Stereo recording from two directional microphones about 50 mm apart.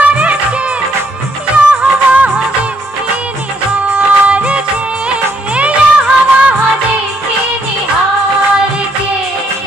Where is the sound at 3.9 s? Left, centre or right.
Right.